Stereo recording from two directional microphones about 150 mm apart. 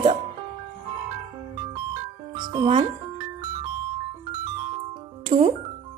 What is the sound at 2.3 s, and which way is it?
Music, 30° right (ahead or behind).